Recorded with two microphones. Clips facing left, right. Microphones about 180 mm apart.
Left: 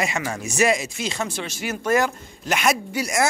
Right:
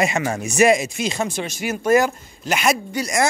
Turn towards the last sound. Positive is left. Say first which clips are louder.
# right 2 dB
turn(degrees=5)  # may be behind; listen again after turning